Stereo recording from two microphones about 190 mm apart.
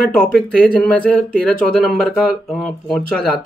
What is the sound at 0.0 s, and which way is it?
Speech, 5° left (ahead or behind).